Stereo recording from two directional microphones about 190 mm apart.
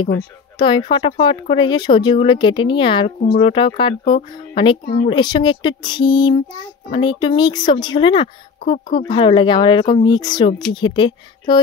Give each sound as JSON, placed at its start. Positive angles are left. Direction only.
{"t": 0.6, "sound": "speech", "side_deg": 25}